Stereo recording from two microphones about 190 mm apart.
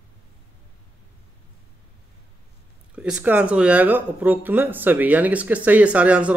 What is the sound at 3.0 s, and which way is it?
Speech, 5° right (ahead or behind).